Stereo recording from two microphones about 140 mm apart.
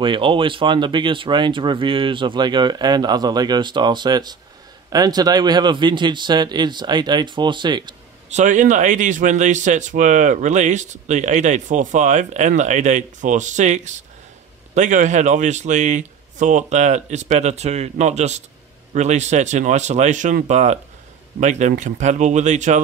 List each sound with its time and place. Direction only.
0.0 s speech: 35° right (ahead or behind)
8.3 s speech: 60° right (ahead or behind)